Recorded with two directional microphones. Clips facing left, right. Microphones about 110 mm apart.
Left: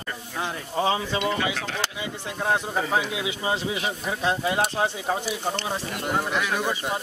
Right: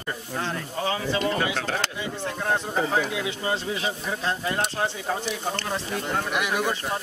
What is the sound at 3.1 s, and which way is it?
Speech, 15° left (ahead or behind).